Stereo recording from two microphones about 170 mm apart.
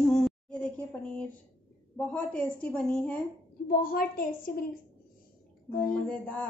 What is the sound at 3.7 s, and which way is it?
Speech, 60° left (ahead or behind).